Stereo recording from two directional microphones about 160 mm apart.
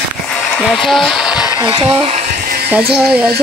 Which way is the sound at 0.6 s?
Centre (ahead or behind).